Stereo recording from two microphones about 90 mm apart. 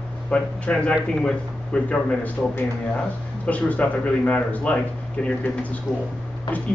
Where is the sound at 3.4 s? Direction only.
15° left (ahead or behind).